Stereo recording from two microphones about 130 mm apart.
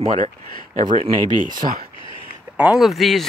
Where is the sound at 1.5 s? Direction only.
90° right.